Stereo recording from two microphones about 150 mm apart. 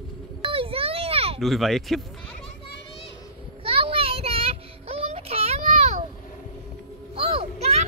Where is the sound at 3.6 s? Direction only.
40° right (ahead or behind).